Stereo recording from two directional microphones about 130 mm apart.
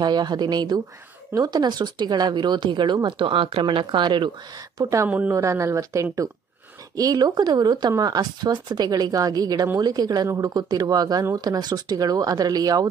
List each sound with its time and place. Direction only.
0.0 s speech: 35° right (ahead or behind)
4.7 s speech: 25° right (ahead or behind)